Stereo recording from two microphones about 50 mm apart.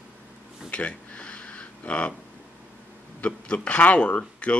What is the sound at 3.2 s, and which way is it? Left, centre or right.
Speech, left.